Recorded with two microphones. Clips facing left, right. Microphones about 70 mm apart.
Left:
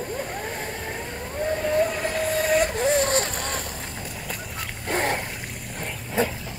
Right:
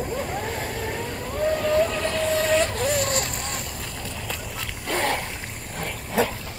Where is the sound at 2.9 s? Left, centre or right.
Left.